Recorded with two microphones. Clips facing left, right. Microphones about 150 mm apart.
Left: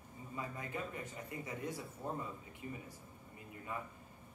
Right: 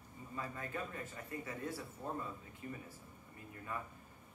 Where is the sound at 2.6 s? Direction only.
15° left (ahead or behind).